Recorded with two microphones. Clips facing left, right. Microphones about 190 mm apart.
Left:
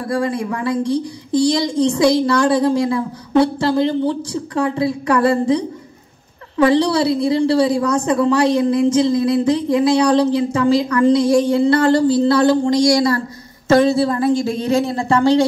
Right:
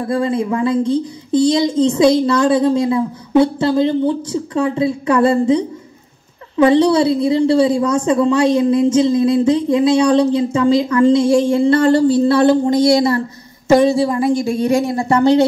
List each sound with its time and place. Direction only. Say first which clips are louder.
0.1 s a woman's voice: right 3 dB; 25° right (ahead or behind)
6.6 s a woman's voice: right 3 dB; 25° right (ahead or behind)